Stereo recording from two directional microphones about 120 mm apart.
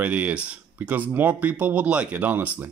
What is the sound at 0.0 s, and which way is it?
Speech, 10° right (ahead or behind).